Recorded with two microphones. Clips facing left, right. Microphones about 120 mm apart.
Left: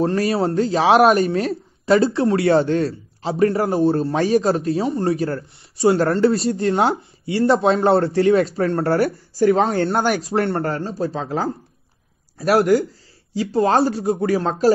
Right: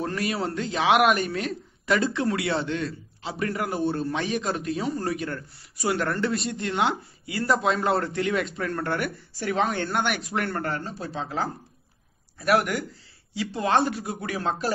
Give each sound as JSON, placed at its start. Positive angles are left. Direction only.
{"t": 0.0, "sound": "speech", "side_deg": 35}